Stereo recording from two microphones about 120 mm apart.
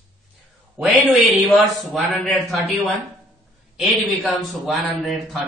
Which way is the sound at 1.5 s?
Centre (ahead or behind).